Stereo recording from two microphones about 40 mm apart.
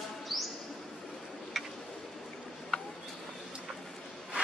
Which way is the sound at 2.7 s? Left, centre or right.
Left.